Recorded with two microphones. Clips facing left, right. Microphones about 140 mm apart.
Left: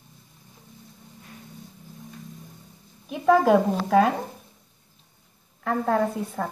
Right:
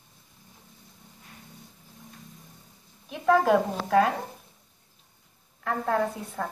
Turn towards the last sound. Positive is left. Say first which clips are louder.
# left 3 dB
turn(degrees=10)  # may be behind; listen again after turning